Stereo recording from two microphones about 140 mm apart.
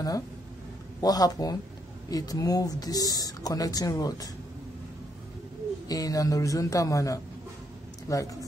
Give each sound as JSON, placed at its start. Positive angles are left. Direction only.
{"t": 1.0, "sound": "speech", "side_deg": 25}
{"t": 5.9, "sound": "speech", "side_deg": 25}